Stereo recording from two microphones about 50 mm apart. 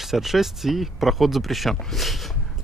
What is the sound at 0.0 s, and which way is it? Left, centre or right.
Speech, centre.